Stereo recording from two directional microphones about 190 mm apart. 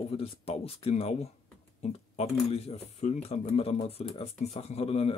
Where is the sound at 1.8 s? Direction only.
35° left (ahead or behind).